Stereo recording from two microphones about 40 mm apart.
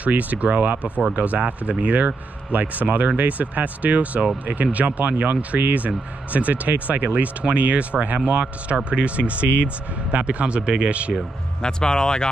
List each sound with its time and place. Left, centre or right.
0.0 s speech: right
11.6 s speech: centre